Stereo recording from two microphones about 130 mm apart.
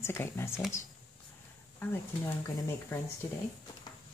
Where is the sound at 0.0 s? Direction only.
20° left (ahead or behind).